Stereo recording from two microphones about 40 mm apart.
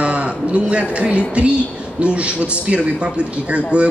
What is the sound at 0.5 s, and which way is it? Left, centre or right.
A man's voice, right.